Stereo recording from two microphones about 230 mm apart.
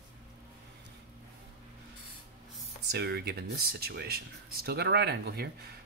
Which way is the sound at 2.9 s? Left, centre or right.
Right.